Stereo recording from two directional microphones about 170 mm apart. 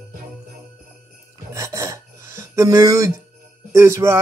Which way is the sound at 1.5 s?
15° right (ahead or behind).